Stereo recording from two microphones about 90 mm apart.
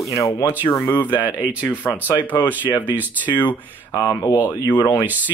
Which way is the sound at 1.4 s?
15° right (ahead or behind).